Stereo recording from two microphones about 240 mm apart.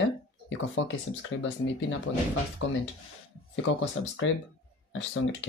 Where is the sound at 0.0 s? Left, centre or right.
Left.